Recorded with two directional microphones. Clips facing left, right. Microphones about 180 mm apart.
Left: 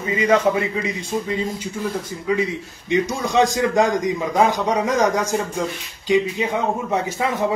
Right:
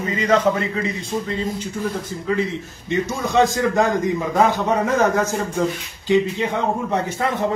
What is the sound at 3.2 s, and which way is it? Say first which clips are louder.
Speech: right 3 dB; 15° left (ahead or behind).